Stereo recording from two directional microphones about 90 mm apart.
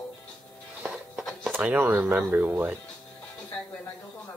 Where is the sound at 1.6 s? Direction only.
20° right (ahead or behind).